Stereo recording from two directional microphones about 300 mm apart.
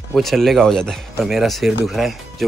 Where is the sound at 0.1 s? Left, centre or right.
Centre.